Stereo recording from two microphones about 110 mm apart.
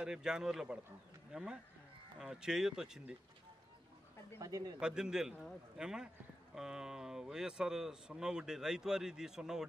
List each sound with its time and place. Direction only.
0.0 s speech: 5° right (ahead or behind)
4.4 s speech: 30° right (ahead or behind)
4.7 s a man's voice: 5° right (ahead or behind)